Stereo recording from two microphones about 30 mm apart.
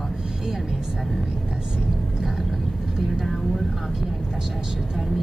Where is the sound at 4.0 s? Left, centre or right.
Centre.